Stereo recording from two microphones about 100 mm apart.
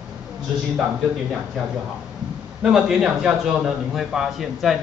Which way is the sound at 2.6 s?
5° right (ahead or behind).